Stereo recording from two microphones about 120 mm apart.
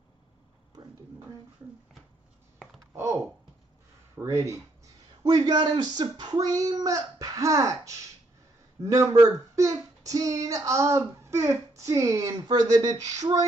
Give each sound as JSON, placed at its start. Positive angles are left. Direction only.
{"t": 2.9, "sound": "computer keyboard", "side_deg": -25}
{"t": 4.2, "sound": "speech", "side_deg": -25}
{"t": 5.2, "sound": "speech", "side_deg": -35}